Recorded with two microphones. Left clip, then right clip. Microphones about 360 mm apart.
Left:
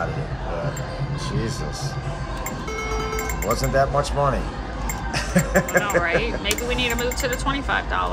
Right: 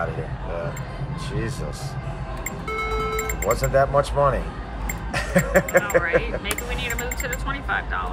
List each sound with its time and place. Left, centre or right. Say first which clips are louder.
3.4 s speech: right 1 dB; right
6.0 s speech: left 1 dB; centre